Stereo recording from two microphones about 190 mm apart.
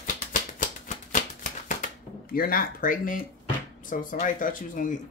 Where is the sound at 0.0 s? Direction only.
45° left (ahead or behind).